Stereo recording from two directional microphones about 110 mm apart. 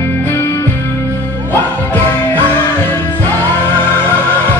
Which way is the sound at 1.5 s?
20° left (ahead or behind).